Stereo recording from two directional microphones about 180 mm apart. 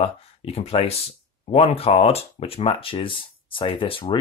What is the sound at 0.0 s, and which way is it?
Speech, 35° left (ahead or behind).